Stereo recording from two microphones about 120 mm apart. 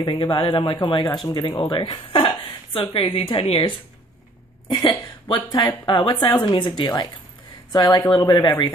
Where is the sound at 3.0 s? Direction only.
50° left (ahead or behind).